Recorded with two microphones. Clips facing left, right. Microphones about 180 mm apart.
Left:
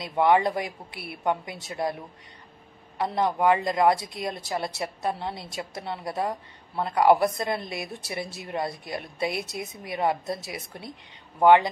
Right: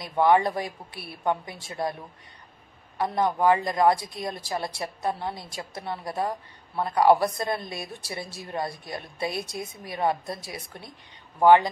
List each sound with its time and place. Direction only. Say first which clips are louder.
0.2 s a woman's voice: even; 25° left (ahead or behind)
3.0 s a woman's voice: even; 25° left (ahead or behind)